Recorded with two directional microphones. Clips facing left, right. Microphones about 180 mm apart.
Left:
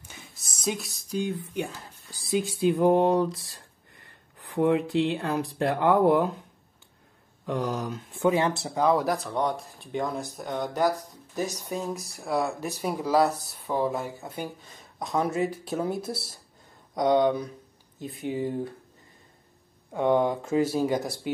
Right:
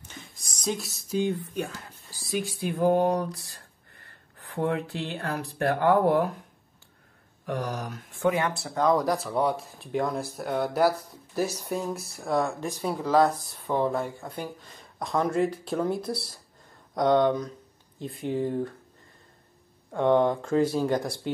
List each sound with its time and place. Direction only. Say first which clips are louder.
0.1 s speech: right 2 dB; 5° left (ahead or behind)
2.4 s speech: left 3 dB; 20° left (ahead or behind)
7.4 s speech: left 2 dB; 20° left (ahead or behind)
8.7 s speech: right 1 dB; 5° left (ahead or behind)
19.9 s speech: right 1 dB; 5° left (ahead or behind)